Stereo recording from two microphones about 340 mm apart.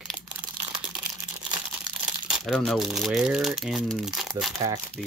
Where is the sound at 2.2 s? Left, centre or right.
Centre.